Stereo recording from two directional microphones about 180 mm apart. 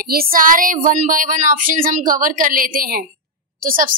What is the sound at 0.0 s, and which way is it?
A woman's voice, 55° right (ahead or behind).